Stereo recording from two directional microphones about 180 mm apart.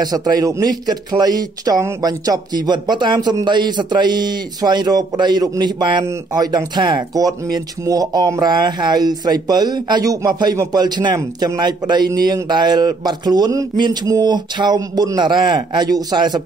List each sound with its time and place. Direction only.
0.0 s speech: 20° right (ahead or behind)